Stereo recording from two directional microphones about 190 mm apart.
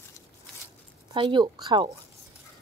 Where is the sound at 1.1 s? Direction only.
25° right (ahead or behind).